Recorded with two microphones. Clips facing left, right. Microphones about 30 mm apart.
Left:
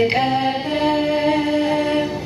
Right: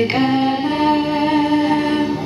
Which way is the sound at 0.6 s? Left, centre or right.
Right.